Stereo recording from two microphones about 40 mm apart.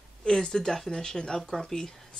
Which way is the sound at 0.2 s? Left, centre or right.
Centre.